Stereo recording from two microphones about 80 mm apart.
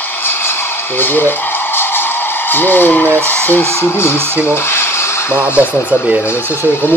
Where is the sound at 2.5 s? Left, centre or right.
Left.